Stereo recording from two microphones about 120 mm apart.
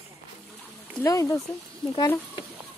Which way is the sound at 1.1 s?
25° left (ahead or behind).